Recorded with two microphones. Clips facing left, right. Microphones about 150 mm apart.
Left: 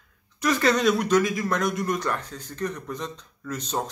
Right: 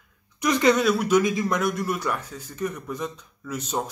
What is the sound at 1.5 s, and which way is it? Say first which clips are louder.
Speech: even; 5° right (ahead or behind).